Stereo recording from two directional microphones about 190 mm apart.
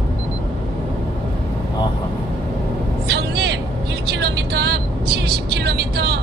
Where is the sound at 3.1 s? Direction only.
60° right (ahead or behind).